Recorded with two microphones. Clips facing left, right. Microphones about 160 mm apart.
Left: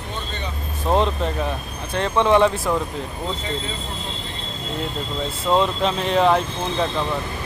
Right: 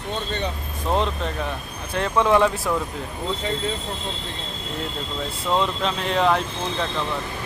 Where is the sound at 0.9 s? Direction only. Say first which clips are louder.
Left 3 dB; 35° left (ahead or behind).